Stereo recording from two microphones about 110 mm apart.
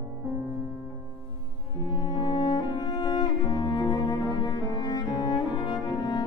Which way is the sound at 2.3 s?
40° left (ahead or behind).